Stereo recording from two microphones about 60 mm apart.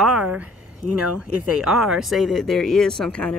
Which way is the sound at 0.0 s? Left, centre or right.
Centre.